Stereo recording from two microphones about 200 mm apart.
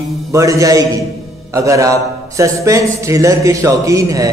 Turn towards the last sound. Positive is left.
turn(degrees=-15)  # may be behind; listen again after turning